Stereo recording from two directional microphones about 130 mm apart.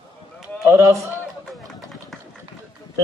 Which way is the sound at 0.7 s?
20° right (ahead or behind).